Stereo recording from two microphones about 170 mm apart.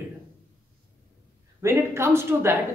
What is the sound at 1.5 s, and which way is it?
A woman's voice, 15° right (ahead or behind).